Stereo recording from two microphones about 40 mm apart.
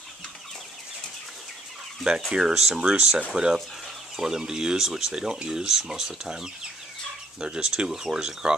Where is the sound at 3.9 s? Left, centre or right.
Centre.